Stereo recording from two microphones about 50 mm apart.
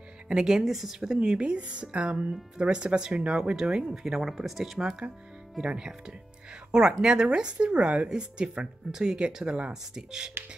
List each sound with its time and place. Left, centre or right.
0.3 s speech: centre
4.0 s speech: centre